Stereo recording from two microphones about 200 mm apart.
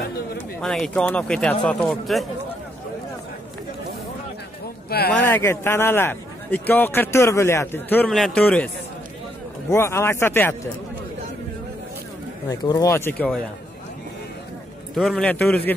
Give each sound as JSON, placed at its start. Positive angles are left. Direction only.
{"t": 0.6, "sound": "speech", "side_deg": 5}
{"t": 4.8, "sound": "speech", "side_deg": 50}
{"t": 5.1, "sound": "speech", "side_deg": 10}
{"t": 9.7, "sound": "speech", "side_deg": 15}
{"t": 12.4, "sound": "speech", "side_deg": 15}
{"t": 15.0, "sound": "speech", "side_deg": 5}